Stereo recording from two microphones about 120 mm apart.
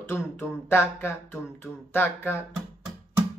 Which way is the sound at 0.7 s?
20° left (ahead or behind).